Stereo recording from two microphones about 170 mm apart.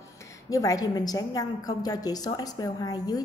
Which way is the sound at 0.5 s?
20° left (ahead or behind).